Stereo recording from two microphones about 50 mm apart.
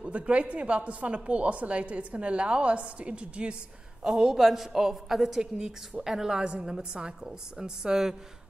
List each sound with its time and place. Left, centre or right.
0.0 s a woman's voice: right
4.0 s a woman's voice: centre